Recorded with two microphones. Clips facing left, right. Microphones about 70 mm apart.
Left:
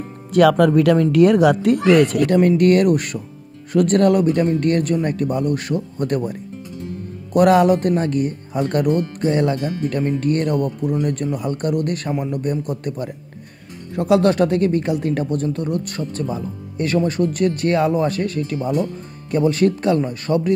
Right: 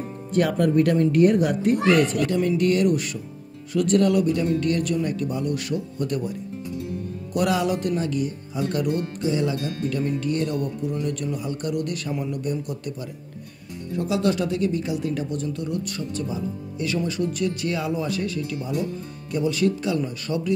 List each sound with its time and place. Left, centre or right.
0.3 s speech: left
7.3 s speech: left
13.9 s speech: left